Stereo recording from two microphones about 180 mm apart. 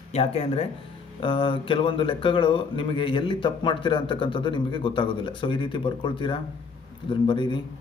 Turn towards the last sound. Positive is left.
turn(degrees=25)  # may be behind; listen again after turning